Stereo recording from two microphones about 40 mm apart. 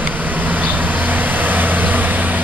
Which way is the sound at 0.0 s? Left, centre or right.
Right.